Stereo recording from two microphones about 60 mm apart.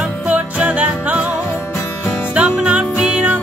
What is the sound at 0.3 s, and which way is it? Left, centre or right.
Music, right.